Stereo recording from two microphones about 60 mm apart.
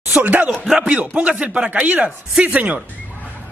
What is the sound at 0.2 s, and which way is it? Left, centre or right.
A man's voice, right.